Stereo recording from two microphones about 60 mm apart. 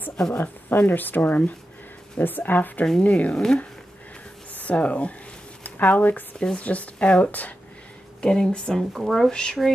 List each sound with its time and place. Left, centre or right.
0.3 s speech: left
2.8 s speech: centre
4.6 s speech: left
8.2 s speech: centre